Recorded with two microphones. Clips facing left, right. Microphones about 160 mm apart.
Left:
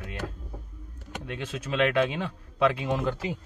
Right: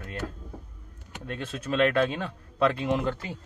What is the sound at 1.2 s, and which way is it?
Speech, 10° left (ahead or behind).